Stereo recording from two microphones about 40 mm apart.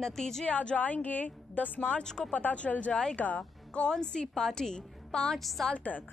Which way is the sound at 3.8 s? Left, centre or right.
Left.